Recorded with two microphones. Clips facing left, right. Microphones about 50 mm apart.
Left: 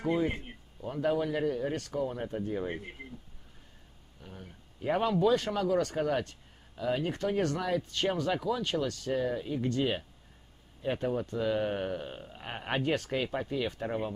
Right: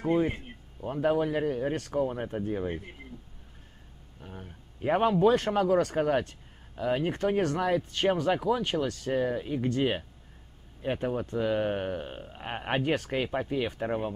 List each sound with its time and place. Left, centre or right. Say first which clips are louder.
0.0 s speech: right 3 dB; right
2.5 s speech: right 3 dB; centre
4.2 s speech: right 3 dB; right